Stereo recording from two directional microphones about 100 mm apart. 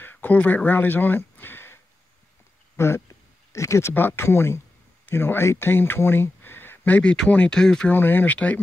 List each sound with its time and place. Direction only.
0.0 s speech: 20° left (ahead or behind)
2.8 s speech: 25° left (ahead or behind); by 7.9 s 5° left (ahead or behind)
7.9 s speech: 20° left (ahead or behind)